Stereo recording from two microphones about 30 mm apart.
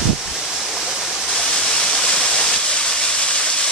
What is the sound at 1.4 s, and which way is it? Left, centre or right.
Waterfall, centre.